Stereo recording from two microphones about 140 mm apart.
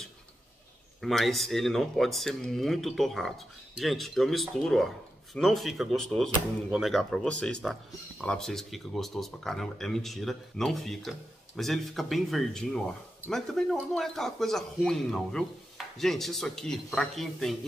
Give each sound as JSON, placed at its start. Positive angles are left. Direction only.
{"t": 1.0, "sound": "speech", "side_deg": 0}